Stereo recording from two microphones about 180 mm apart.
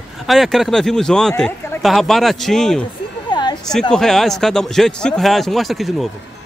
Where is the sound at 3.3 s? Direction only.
25° left (ahead or behind).